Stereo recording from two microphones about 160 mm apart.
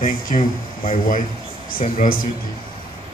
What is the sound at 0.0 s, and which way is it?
Speech, 60° left (ahead or behind).